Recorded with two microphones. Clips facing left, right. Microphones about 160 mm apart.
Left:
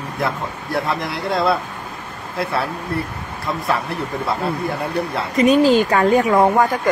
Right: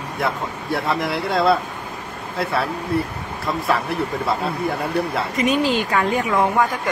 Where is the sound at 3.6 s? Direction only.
Centre (ahead or behind).